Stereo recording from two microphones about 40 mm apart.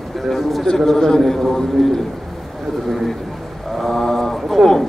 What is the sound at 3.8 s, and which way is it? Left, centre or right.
Mantra, centre.